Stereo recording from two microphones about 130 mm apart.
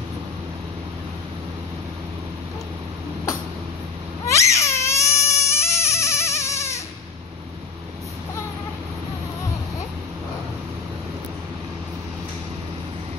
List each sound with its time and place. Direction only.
4.3 s crying: 20° left (ahead or behind)